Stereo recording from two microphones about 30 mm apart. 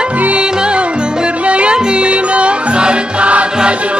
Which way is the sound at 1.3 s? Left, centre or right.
Right.